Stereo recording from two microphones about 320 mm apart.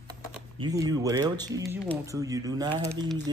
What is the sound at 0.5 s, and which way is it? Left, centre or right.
Speech, centre.